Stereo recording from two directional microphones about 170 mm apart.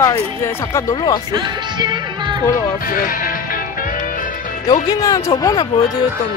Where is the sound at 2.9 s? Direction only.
55° left (ahead or behind).